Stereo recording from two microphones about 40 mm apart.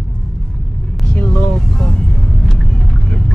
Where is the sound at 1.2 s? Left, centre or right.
Centre.